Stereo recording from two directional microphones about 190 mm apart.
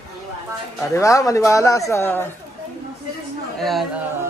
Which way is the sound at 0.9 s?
15° left (ahead or behind).